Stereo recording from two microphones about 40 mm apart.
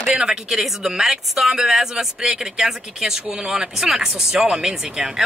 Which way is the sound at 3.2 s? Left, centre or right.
Right.